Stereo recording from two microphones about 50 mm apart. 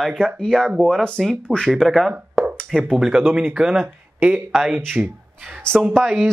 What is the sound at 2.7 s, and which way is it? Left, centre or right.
Speech, centre.